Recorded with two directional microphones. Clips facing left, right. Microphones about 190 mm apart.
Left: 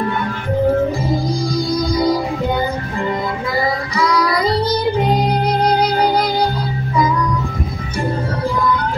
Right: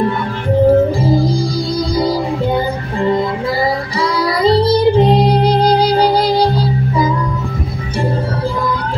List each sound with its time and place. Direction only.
0.7 s music: 30° right (ahead or behind)